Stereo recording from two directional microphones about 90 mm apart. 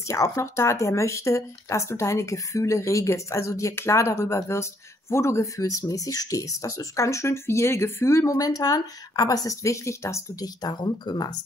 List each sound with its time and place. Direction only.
0.1 s speech: 35° left (ahead or behind)
10.4 s speech: 50° left (ahead or behind)